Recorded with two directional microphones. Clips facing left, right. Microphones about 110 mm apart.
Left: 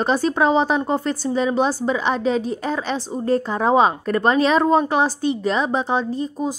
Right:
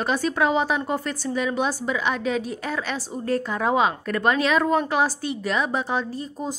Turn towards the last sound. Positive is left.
turn(degrees=20)  # may be behind; listen again after turning